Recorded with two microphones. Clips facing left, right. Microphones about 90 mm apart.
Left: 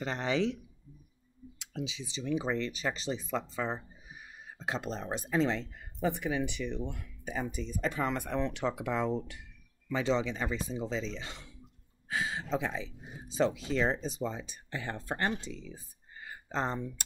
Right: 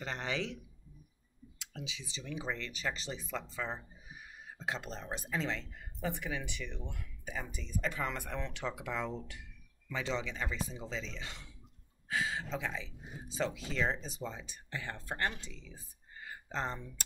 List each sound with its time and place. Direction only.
0.0 s a man's voice: 30° left (ahead or behind)
1.6 s speech: 25° left (ahead or behind)
16.5 s speech: 25° left (ahead or behind)